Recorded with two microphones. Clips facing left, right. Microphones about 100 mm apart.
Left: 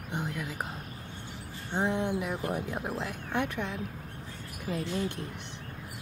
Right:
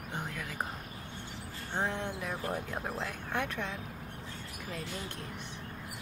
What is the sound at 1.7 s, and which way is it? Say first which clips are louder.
Speech: left 6 dB; 15° left (ahead or behind).